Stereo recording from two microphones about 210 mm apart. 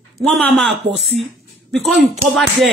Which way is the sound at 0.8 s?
50° right (ahead or behind).